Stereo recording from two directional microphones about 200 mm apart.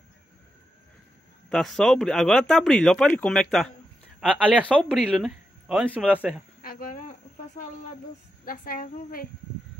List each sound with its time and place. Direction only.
1.5 s speech: centre (ahead or behind)
6.6 s cricket: 45° left (ahead or behind)
8.5 s a woman's voice: 45° left (ahead or behind)